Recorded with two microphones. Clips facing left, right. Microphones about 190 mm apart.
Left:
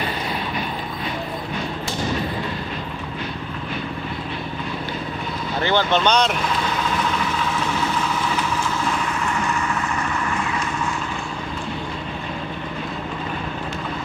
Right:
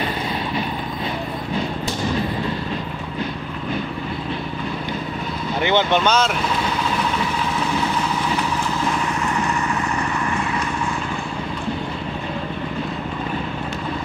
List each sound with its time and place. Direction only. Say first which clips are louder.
5.6 s speech: right 1 dB; 15° right (ahead or behind)
6.0 s speech: even; 5° right (ahead or behind)